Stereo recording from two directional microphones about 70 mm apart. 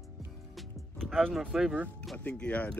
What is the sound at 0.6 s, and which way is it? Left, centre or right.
Music, centre.